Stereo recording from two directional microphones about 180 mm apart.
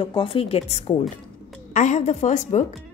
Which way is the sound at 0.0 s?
30° left (ahead or behind).